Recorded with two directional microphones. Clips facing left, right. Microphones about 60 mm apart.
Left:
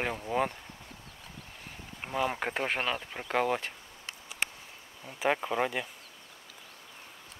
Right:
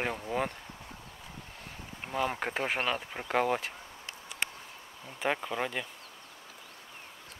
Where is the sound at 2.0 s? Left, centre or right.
Centre.